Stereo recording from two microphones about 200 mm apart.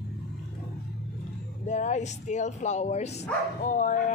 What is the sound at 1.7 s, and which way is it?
Speech, 35° left (ahead or behind).